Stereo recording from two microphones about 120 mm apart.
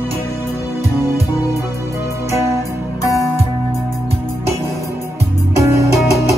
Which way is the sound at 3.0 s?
30° left (ahead or behind).